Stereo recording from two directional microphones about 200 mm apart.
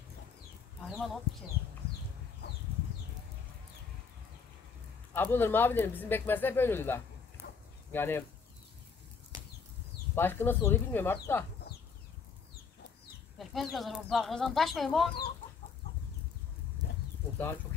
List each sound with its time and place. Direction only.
0.8 s speech: centre (ahead or behind)
5.1 s speech: 10° left (ahead or behind)
7.4 s bow-wow: 60° left (ahead or behind)
7.9 s speech: 10° left (ahead or behind)
10.1 s speech: 10° left (ahead or behind)
13.4 s speech: centre (ahead or behind)